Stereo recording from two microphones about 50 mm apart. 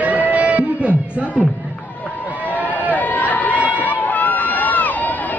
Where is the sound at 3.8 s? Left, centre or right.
Left.